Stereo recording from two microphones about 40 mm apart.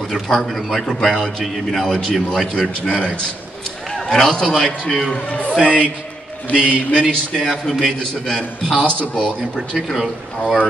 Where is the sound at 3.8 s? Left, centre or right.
Centre.